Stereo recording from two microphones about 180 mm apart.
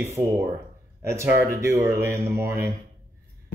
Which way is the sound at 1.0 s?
15° right (ahead or behind).